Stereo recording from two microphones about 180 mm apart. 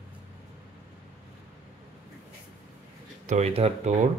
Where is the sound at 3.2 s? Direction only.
40° right (ahead or behind).